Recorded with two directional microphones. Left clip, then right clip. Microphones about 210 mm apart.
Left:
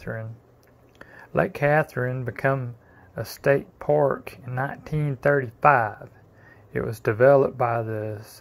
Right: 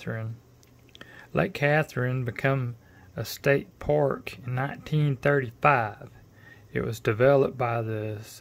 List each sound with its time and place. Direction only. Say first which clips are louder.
0.0 s speech: left 2 dB; 20° right (ahead or behind)